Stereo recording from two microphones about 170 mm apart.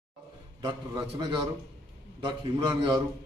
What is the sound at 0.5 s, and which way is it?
A man's voice, 25° right (ahead or behind).